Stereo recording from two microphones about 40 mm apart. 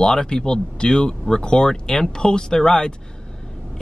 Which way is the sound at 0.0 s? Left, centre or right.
Centre.